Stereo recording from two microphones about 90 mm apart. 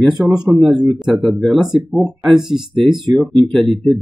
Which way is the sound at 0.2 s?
10° right (ahead or behind).